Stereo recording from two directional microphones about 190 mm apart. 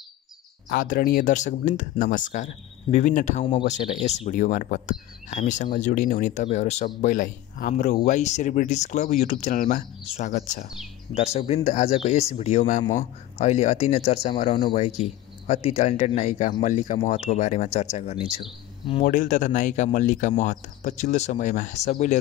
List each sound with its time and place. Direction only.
0.7 s speech: 50° left (ahead or behind)
10.3 s speech: 55° left (ahead or behind)
11.1 s speech: 35° left (ahead or behind)
19.0 s speech: 40° left (ahead or behind)